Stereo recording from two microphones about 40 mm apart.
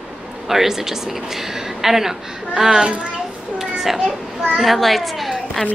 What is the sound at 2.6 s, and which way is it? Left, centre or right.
Speech, centre.